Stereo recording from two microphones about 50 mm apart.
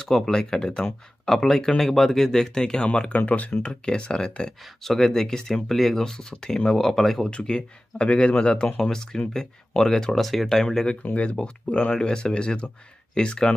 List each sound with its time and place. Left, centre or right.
0.0 s speech: centre; by 3.5 s left
3.6 s speech: left
4.8 s speech: centre
7.2 s speech: left
11.0 s speech: left